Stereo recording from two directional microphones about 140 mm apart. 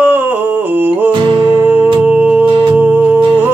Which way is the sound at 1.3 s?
35° right (ahead or behind).